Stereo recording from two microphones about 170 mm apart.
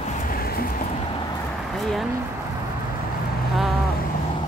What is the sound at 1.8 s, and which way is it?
Speech, centre (ahead or behind).